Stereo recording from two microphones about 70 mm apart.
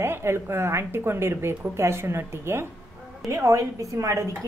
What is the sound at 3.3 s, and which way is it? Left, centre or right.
A woman's voice, right.